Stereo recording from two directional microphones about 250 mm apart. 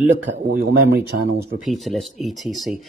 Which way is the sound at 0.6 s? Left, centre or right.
Right.